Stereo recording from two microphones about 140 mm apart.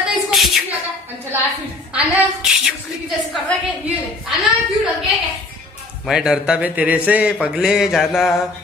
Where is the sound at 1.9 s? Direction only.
5° right (ahead or behind).